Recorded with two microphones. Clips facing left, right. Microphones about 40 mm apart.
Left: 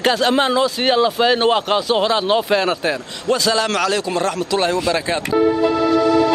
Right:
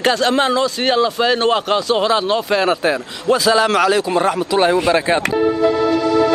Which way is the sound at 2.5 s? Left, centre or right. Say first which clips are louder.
Right 3 dB; centre.